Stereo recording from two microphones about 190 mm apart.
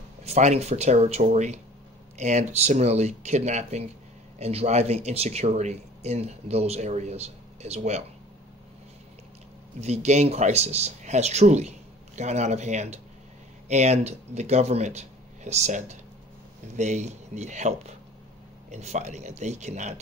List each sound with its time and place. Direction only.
0.2 s speech: 35° right (ahead or behind)
9.8 s speech: 35° right (ahead or behind)